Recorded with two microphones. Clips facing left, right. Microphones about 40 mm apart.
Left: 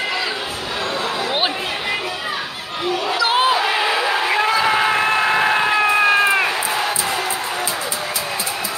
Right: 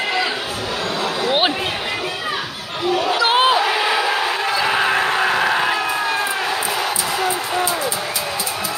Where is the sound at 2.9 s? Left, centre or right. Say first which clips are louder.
Right 2 dB; right.